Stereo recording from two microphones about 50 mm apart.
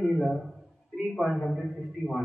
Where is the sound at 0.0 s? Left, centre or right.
Centre.